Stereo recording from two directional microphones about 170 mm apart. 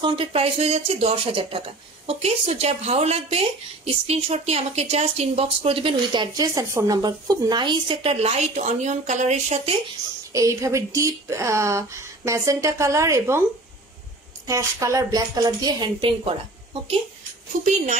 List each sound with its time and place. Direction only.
0.0 s a woman's voice: 30° right (ahead or behind)
6.3 s a woman's voice: 20° right (ahead or behind); by 9.6 s 45° right (ahead or behind)
10.3 s speech: 20° right (ahead or behind)
14.5 s a woman's voice: 20° right (ahead or behind)